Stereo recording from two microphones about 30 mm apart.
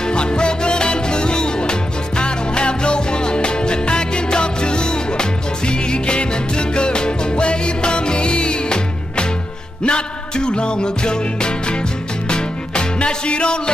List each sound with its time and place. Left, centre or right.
0.0 s music: left